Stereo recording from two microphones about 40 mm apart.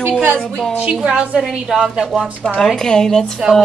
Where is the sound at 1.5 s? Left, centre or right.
Centre.